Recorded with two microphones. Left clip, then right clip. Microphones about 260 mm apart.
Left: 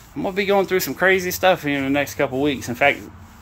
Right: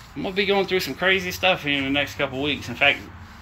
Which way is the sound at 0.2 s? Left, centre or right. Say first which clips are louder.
Left 3 dB; centre.